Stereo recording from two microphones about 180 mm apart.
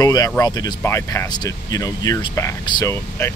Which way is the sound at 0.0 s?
20° left (ahead or behind).